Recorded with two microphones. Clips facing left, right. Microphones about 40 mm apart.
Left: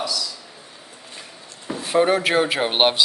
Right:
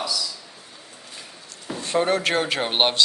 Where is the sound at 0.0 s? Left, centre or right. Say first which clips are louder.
Left 1 dB; centre.